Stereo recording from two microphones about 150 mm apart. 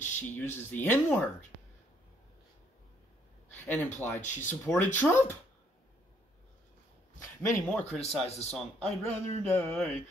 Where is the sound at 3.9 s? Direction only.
15° left (ahead or behind).